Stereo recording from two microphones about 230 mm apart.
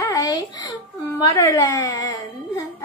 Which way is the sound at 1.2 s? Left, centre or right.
Centre.